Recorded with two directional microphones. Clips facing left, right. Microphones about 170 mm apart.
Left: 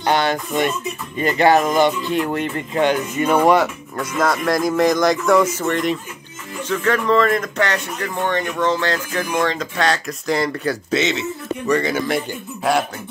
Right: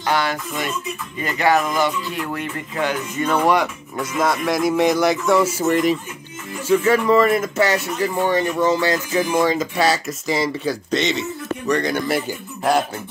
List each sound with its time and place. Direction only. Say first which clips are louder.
0.0 s speech: left 3 dB; 25° left (ahead or behind)
3.5 s speech: left 2 dB; centre (ahead or behind)